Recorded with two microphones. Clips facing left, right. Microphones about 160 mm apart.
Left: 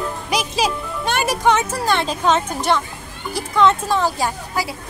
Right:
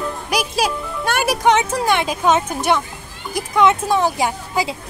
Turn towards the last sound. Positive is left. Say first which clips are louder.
# right 2 dB
turn(degrees=-15)  # may be behind; listen again after turning